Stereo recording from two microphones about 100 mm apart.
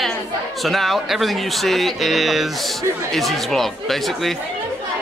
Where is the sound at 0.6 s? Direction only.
Centre (ahead or behind).